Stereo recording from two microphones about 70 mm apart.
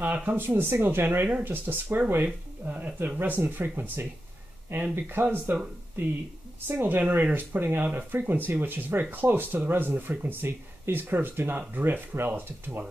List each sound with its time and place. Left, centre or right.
0.0 s speech: right
0.4 s speech: right
6.8 s speech: right